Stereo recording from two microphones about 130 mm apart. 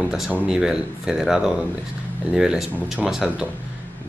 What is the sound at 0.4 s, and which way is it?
Speech, 5° right (ahead or behind).